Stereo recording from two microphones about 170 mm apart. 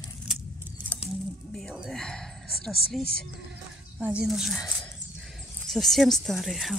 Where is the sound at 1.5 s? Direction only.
Centre (ahead or behind).